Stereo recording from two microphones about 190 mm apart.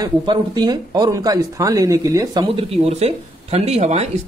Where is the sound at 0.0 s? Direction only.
20° right (ahead or behind).